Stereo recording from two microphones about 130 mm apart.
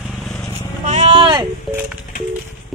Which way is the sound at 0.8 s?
60° right (ahead or behind).